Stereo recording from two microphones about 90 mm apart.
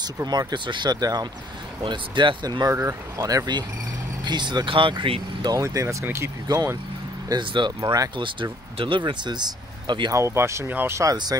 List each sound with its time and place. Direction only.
0.0 s speech: 45° right (ahead or behind)
1.8 s speech: 60° right (ahead or behind)
2.7 s speech: 30° right (ahead or behind); by 5.5 s 70° right (ahead or behind)
5.5 s speech: 35° right (ahead or behind)
6.4 s speech: 45° right (ahead or behind)
7.2 s speech: 55° right (ahead or behind)
8.2 s speech: 70° right (ahead or behind)
10.1 s speech: 30° right (ahead or behind)